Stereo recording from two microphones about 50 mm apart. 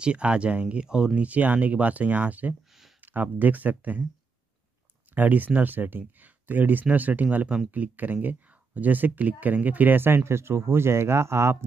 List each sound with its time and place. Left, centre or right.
0.0 s speech: right
1.2 s speech: right
5.1 s speech: right